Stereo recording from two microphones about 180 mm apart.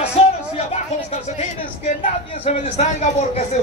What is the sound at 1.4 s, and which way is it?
A man's voice, 40° left (ahead or behind).